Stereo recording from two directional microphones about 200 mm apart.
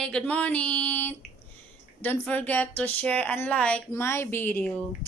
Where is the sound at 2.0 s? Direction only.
10° left (ahead or behind).